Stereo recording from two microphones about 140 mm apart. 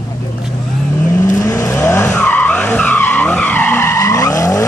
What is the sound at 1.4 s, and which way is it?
Vehicle, 20° left (ahead or behind).